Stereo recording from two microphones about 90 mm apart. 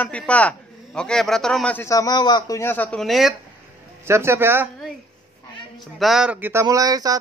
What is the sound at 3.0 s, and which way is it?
Speech, centre (ahead or behind).